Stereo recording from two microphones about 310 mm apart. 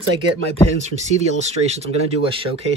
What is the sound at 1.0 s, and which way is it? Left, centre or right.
Speech, right.